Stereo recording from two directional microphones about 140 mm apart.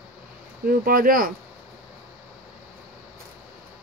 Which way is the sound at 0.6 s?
90° right.